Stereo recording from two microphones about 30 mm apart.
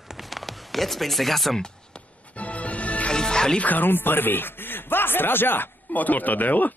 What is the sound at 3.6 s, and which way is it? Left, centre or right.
Speech, left.